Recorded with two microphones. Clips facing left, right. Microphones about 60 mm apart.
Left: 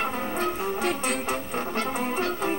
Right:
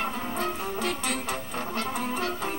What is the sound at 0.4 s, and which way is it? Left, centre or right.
Music, left.